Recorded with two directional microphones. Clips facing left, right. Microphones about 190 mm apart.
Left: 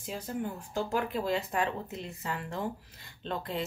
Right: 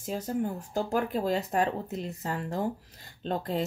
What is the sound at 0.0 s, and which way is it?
Speech, 40° right (ahead or behind).